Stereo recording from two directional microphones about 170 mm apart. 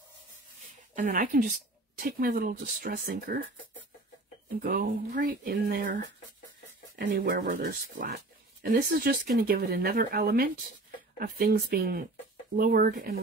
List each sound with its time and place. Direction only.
0.9 s speech: 55° right (ahead or behind); by 3.3 s 70° right (ahead or behind)
4.6 s speech: 60° right (ahead or behind)
7.0 s speech: 65° right (ahead or behind)